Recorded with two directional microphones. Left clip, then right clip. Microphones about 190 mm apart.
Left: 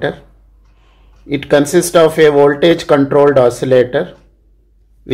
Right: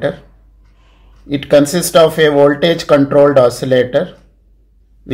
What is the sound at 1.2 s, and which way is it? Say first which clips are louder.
Speech: right 2 dB; 35° left (ahead or behind).